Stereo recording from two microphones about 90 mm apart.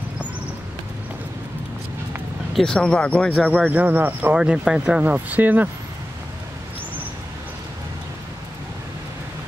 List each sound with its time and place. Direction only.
2.5 s speech: 5° left (ahead or behind)
3.6 s speech: 20° right (ahead or behind)
4.4 s speech: 10° right (ahead or behind)